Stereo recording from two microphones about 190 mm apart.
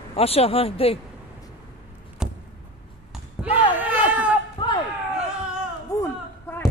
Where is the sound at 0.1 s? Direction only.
30° left (ahead or behind).